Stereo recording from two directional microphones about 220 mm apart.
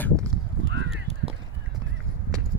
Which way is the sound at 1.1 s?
25° left (ahead or behind).